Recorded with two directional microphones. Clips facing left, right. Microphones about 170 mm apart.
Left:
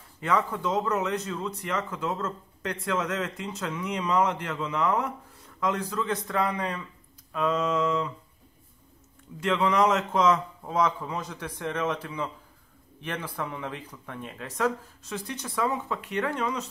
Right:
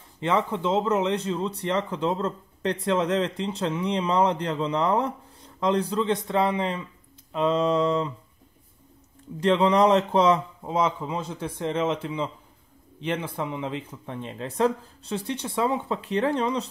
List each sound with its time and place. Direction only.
0.2 s a man's voice: 25° right (ahead or behind)
9.4 s a man's voice: 30° right (ahead or behind)